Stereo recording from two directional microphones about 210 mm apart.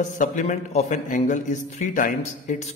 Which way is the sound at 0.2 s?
35° left (ahead or behind).